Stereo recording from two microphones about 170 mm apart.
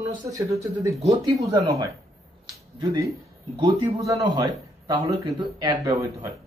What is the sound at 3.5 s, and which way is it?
Speech, 25° right (ahead or behind).